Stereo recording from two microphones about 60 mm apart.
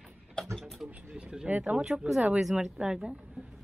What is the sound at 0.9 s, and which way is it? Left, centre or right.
Mechanisms, right.